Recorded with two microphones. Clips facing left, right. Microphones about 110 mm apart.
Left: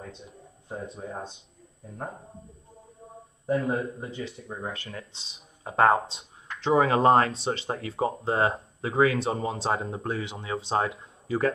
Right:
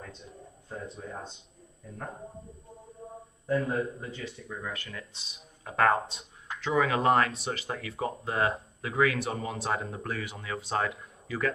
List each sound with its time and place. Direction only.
0.9 s speech: 30° left (ahead or behind)
3.4 s speech: 30° left (ahead or behind)